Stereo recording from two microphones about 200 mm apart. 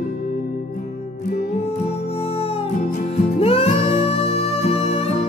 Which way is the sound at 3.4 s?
30° left (ahead or behind).